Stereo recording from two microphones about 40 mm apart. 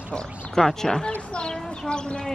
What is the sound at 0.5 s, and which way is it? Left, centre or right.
Speech, centre.